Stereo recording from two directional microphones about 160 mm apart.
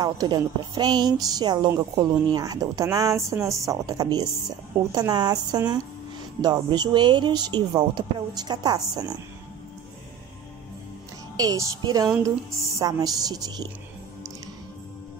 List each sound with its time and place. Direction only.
0.0 s speech: 25° right (ahead or behind)
11.3 s speech: 25° right (ahead or behind)